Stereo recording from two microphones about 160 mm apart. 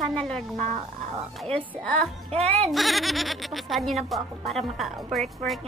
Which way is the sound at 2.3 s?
40° right (ahead or behind).